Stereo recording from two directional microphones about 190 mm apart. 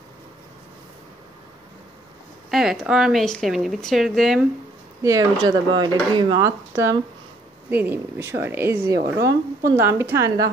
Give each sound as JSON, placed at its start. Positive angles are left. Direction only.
{"t": 2.5, "sound": "a woman's voice", "side_deg": 0}
{"t": 5.0, "sound": "speech", "side_deg": -20}
{"t": 8.9, "sound": "a woman's voice", "side_deg": -60}
{"t": 9.8, "sound": "speech", "side_deg": -10}